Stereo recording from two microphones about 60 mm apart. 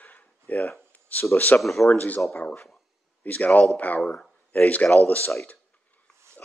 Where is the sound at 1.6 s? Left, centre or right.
Centre.